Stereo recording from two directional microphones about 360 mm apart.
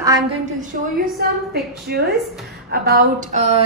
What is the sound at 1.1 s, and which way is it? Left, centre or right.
A woman's voice, right.